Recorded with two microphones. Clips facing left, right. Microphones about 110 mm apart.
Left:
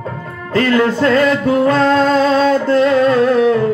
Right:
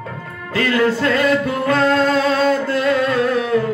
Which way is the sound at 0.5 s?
35° left (ahead or behind).